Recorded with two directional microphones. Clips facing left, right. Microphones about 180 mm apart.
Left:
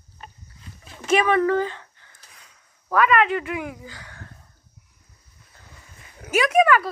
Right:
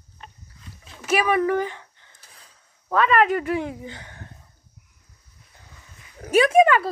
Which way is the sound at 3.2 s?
40° right (ahead or behind).